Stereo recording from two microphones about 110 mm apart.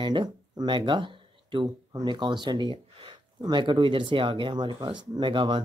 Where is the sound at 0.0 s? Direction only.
45° right (ahead or behind).